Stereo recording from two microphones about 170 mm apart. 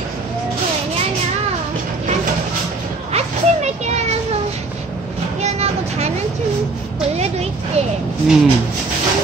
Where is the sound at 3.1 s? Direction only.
40° right (ahead or behind).